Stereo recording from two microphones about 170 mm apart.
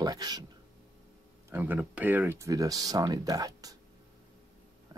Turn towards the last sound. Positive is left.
turn(degrees=-20)  # may be behind; listen again after turning